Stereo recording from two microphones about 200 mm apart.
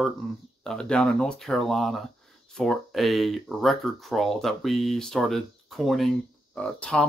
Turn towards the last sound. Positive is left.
turn(degrees=5)  # may be behind; listen again after turning